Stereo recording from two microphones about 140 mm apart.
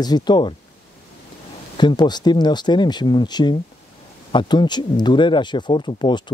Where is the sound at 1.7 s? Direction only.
30° left (ahead or behind).